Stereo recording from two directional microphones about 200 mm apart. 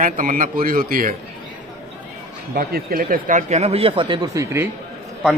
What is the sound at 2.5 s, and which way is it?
Speech, 50° right (ahead or behind).